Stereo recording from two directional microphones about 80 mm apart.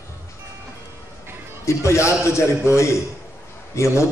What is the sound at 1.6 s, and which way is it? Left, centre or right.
A man's voice, left.